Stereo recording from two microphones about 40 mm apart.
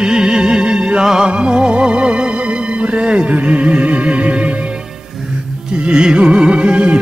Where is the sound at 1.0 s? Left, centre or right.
Centre; by 4.5 s right.